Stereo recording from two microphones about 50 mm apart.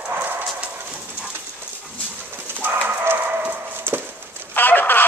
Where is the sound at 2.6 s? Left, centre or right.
Right.